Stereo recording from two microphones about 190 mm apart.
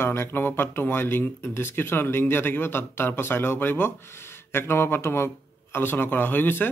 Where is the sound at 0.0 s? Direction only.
10° left (ahead or behind).